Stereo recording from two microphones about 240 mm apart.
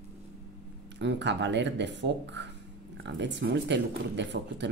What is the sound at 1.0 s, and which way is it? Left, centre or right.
Speech, right.